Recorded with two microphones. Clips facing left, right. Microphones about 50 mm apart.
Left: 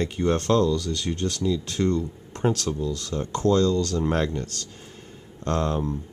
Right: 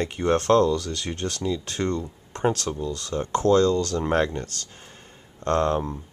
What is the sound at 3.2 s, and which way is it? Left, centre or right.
Speech, right.